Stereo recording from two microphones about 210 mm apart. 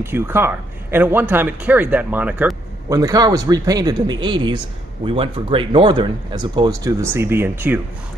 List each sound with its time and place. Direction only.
0.0 s speech: 10° right (ahead or behind)
3.0 s speech: 15° right (ahead or behind)